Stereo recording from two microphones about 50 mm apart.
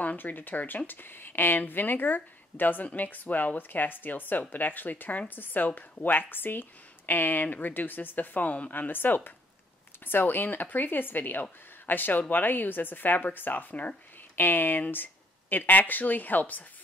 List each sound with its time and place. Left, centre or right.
0.0 s speech: left